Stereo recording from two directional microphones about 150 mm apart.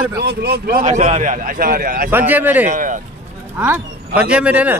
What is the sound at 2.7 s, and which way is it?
Speech, 60° right (ahead or behind).